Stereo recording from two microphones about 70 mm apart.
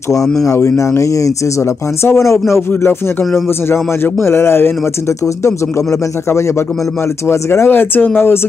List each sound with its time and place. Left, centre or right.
0.2 s speech: centre
0.5 s speech: left
2.0 s a man's voice: left
3.6 s a man's voice: left
5.2 s a man's voice: left